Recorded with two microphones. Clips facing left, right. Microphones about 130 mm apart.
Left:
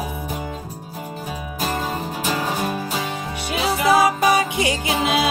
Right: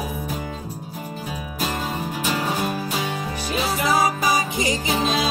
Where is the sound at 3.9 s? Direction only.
60° left (ahead or behind).